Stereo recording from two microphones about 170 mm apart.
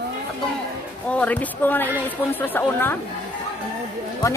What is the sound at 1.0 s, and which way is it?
Speech, 10° left (ahead or behind).